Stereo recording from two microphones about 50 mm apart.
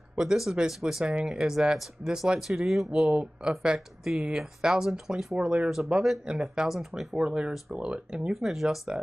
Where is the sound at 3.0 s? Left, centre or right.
Right; by 5.3 s centre.